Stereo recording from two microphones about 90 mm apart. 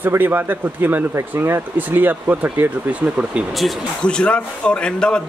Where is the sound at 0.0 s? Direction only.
20° right (ahead or behind).